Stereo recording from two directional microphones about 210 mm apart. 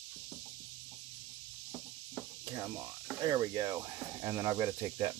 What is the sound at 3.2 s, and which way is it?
Speech, 20° right (ahead or behind).